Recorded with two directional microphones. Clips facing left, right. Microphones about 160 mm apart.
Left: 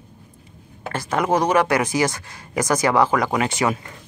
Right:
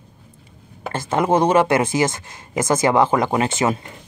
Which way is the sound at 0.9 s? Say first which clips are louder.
Right 2 dB; 25° right (ahead or behind).